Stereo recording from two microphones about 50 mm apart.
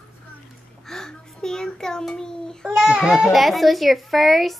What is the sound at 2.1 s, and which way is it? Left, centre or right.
Child singing, centre.